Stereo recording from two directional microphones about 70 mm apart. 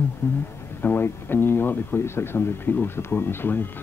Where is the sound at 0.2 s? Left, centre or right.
Left.